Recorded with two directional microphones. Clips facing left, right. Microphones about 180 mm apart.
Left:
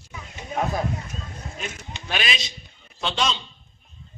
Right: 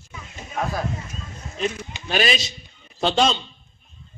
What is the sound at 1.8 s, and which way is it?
Speech, 40° right (ahead or behind).